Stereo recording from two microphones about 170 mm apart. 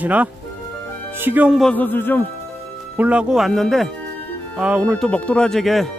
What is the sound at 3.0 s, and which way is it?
Speech, 5° right (ahead or behind).